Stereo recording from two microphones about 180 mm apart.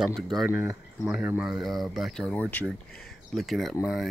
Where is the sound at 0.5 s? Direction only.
10° right (ahead or behind).